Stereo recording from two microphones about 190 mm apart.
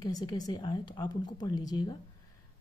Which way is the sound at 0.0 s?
20° left (ahead or behind).